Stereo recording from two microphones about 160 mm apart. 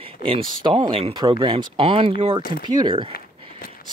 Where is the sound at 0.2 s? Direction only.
30° right (ahead or behind).